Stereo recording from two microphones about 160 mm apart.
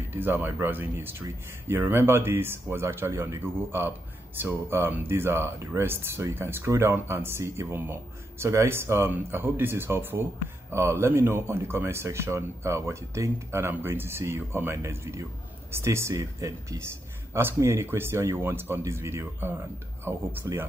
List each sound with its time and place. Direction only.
0.1 s speech: 15° right (ahead or behind)